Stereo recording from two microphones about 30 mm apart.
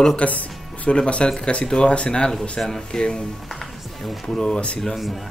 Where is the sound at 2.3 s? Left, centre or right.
Centre.